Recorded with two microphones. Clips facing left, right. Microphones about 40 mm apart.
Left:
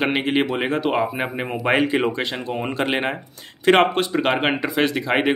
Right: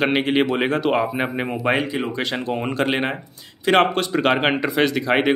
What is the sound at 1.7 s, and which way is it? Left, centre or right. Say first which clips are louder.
Speech: left 7 dB; left.